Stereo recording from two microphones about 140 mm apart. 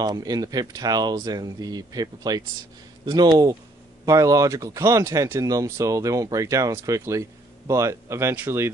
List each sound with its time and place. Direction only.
0.0 s speech: 25° right (ahead or behind)